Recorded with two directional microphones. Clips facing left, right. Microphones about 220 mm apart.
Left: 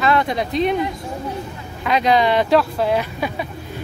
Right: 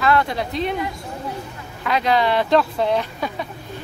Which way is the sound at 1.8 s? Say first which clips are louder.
Left 3 dB; 20° left (ahead or behind).